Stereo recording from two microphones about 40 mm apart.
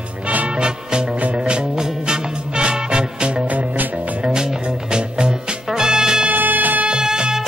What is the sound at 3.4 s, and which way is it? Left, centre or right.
Music, right.